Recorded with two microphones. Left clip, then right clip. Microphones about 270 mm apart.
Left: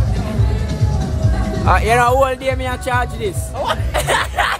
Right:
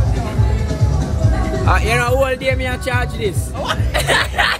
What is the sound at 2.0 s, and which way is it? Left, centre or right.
Speech, centre.